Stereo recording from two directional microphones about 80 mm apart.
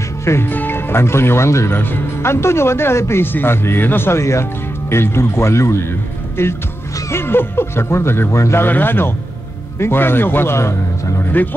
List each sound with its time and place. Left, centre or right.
0.2 s speech: left